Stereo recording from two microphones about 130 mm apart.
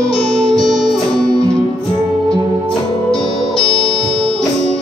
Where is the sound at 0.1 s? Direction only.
5° left (ahead or behind).